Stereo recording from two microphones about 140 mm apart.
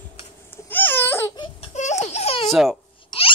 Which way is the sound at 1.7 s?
55° left (ahead or behind).